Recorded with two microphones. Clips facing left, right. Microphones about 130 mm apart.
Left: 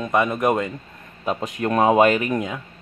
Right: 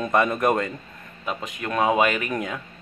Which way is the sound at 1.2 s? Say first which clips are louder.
Left 6 dB; 35° left (ahead or behind).